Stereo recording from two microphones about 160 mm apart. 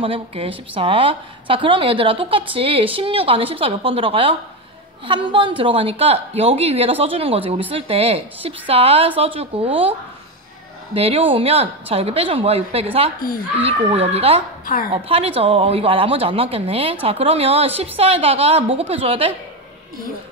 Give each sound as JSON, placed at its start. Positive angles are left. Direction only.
{"t": 0.0, "sound": "a woman's voice", "side_deg": -35}
{"t": 11.0, "sound": "a woman's voice", "side_deg": -35}